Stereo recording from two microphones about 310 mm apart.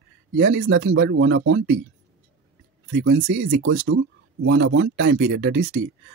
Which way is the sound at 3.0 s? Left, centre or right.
Right.